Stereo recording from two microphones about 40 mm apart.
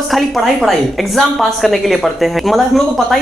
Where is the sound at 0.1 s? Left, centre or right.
Centre.